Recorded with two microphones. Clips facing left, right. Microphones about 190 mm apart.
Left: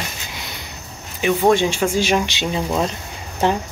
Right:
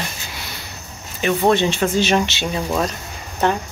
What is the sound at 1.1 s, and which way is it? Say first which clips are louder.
Speech: left 1 dB; 10° left (ahead or behind).